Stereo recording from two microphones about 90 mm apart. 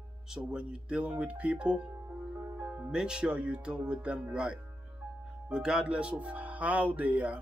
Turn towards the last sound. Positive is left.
turn(degrees=-15)  # may be behind; listen again after turning